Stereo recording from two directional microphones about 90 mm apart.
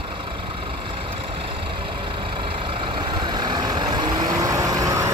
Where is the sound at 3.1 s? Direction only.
55° right (ahead or behind).